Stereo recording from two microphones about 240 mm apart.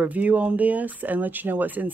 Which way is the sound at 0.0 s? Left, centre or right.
Centre.